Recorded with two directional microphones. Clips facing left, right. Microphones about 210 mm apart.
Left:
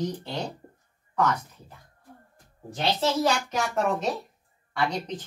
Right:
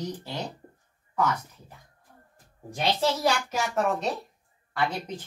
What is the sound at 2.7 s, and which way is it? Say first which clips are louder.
Speech: left 1 dB; 10° right (ahead or behind).